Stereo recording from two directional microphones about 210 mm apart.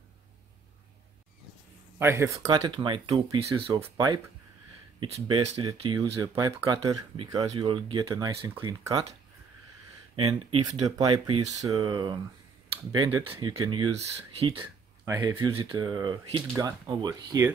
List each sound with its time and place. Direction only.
2.0 s speech: 10° right (ahead or behind)
3.8 s speech: 15° right (ahead or behind)
5.6 s speech: 20° right (ahead or behind)
10.5 s speech: 25° right (ahead or behind)
11.1 s speech: 90° right
11.6 s speech: 15° right (ahead or behind)
15.0 s speech: 15° right (ahead or behind)